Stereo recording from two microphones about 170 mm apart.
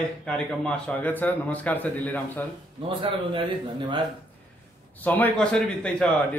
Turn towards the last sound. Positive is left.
turn(degrees=5)  # may be behind; listen again after turning